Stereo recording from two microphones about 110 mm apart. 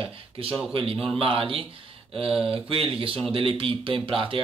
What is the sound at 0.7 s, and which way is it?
A man's voice, 55° right (ahead or behind).